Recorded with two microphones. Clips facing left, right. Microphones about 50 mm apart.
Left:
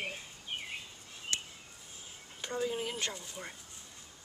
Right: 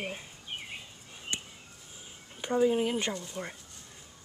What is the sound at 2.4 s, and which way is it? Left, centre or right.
Speech, centre.